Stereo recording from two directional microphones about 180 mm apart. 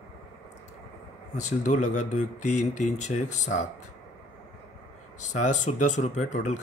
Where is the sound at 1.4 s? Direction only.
40° left (ahead or behind).